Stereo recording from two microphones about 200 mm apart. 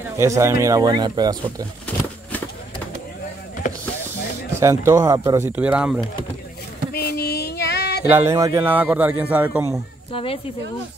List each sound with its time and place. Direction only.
0.2 s speech: 15° right (ahead or behind)
4.6 s speech: 15° right (ahead or behind)
5.6 s speech: 5° right (ahead or behind)
6.9 s a sound: 50° left (ahead or behind)
8.1 s speech: 10° right (ahead or behind)
10.1 s speech: 30° left (ahead or behind)